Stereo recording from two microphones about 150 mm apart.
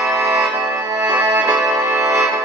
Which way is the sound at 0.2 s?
15° right (ahead or behind).